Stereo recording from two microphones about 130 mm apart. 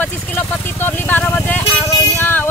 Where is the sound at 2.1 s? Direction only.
15° left (ahead or behind).